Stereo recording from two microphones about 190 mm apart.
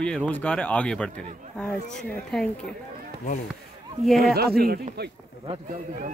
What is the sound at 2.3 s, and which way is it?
Speech, 5° left (ahead or behind).